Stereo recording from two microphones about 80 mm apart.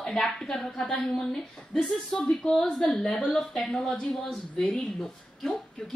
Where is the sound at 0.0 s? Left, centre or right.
Centre.